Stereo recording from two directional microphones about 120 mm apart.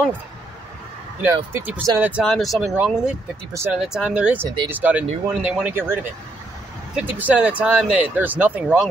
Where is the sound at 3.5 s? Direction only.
20° right (ahead or behind).